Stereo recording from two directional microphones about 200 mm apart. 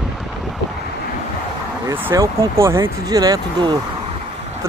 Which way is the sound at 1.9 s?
10° right (ahead or behind).